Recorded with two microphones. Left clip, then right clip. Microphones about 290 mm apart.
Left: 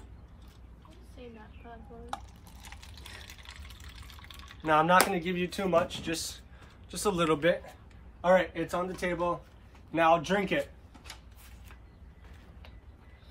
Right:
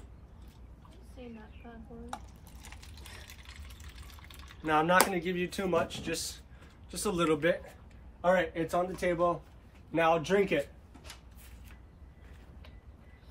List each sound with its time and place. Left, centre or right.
2.1 s speech: centre
2.6 s vehicle: centre
5.1 s speech: centre